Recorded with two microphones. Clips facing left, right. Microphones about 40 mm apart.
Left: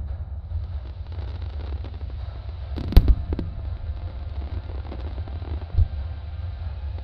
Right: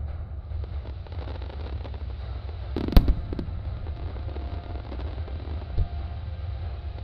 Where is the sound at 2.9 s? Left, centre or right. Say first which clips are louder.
Left 2 dB; centre.